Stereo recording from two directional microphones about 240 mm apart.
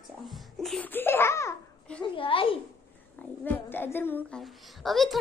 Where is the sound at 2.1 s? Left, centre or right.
Left.